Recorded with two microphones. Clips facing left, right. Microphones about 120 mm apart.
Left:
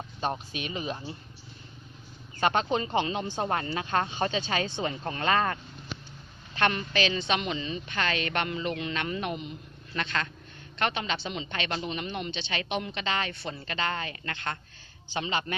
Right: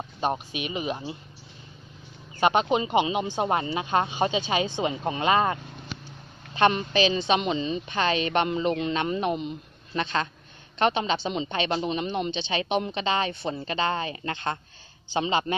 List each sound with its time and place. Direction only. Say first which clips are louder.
0.2 s speech: right 4 dB; 15° right (ahead or behind)
2.4 s a woman's voice: right 4 dB; 15° right (ahead or behind)